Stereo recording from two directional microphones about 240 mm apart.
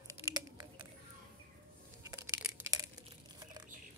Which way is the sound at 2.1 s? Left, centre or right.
Centre.